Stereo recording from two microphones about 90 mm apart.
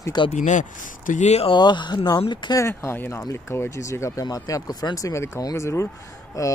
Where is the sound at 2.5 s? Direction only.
30° left (ahead or behind).